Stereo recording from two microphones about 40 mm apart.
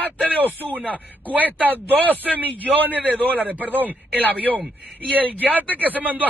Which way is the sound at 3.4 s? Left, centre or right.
Right.